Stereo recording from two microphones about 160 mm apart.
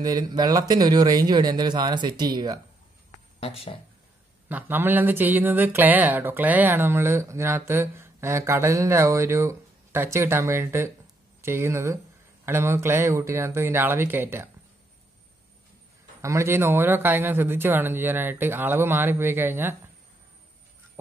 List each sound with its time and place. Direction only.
0.0 s a man's voice: 25° right (ahead or behind)
3.3 s speech: 40° left (ahead or behind)
4.5 s speech: 10° right (ahead or behind)
16.2 s speech: 20° right (ahead or behind)